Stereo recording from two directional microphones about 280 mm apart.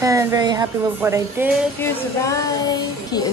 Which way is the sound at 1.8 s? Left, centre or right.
Centre.